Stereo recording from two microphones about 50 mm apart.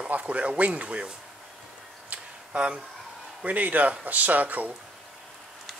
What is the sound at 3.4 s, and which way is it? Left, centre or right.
Speech, right.